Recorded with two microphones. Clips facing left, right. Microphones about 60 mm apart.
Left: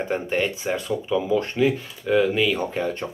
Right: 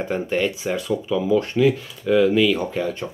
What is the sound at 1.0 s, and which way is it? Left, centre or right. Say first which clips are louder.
Speech: right 2 dB; centre.